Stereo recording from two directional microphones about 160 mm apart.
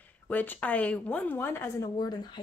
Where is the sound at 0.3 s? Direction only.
10° left (ahead or behind).